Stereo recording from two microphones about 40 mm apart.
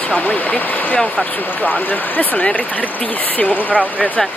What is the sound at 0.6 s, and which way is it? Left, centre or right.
Speech, left.